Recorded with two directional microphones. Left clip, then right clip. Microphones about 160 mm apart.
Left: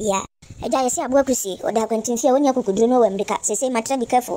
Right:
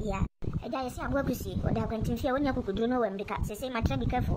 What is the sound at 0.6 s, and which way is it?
A woman's voice, 60° left (ahead or behind).